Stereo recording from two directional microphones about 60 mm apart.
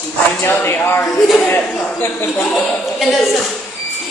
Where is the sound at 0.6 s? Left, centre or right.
Left.